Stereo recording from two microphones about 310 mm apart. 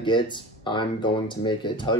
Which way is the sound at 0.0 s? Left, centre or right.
Centre.